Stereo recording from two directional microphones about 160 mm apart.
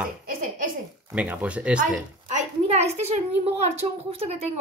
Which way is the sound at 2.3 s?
45° right (ahead or behind).